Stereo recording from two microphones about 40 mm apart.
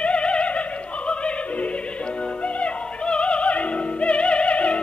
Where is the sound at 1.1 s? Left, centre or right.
Left.